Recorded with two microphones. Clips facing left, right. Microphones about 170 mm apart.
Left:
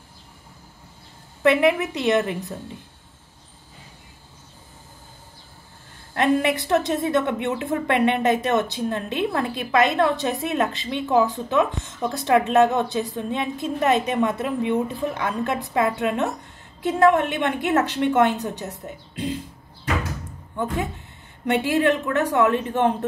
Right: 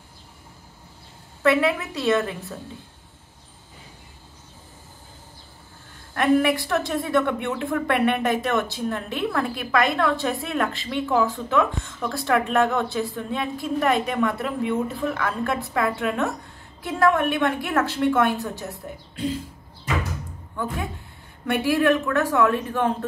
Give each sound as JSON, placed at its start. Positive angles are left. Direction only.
{"t": 1.4, "sound": "a woman's voice", "side_deg": 20}
{"t": 6.1, "sound": "a woman's voice", "side_deg": 20}
{"t": 21.5, "sound": "a woman's voice", "side_deg": 20}